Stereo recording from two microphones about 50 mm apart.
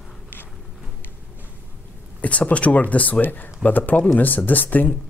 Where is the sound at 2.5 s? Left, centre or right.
Left.